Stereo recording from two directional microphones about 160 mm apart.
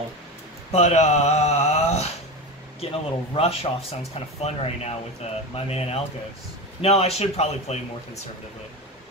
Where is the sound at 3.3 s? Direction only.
40° left (ahead or behind).